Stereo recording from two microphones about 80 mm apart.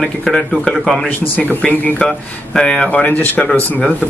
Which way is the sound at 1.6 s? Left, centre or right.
Centre.